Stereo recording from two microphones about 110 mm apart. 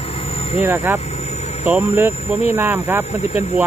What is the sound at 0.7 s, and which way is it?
Speech, 25° right (ahead or behind).